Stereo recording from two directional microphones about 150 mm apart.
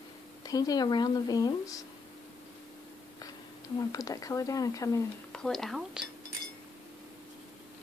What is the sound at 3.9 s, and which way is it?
Speech, 25° left (ahead or behind).